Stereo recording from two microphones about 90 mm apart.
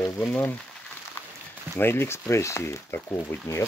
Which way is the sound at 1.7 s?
25° left (ahead or behind).